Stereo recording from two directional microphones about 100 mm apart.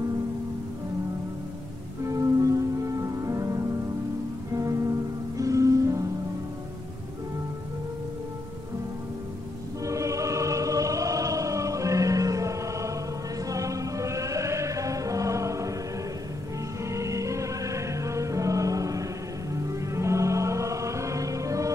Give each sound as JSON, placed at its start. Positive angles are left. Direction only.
{"t": 2.0, "sound": "music", "side_deg": -35}
{"t": 9.8, "sound": "music", "side_deg": -30}
{"t": 16.8, "sound": "music", "side_deg": -30}